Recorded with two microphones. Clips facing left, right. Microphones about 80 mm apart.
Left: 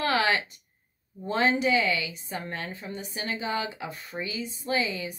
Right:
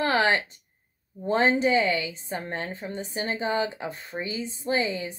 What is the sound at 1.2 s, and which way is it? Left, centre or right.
A woman's voice, right.